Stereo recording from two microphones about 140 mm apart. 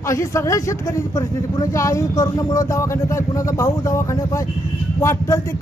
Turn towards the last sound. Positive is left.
turn(degrees=20)  # may be behind; listen again after turning